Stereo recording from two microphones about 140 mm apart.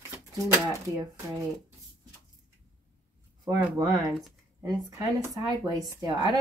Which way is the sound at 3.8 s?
25° right (ahead or behind).